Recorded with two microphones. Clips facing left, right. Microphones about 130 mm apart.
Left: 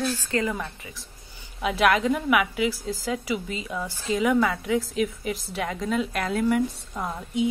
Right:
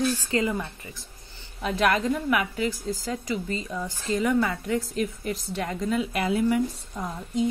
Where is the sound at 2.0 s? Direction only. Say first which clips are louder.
Left 2 dB; 75° left (ahead or behind).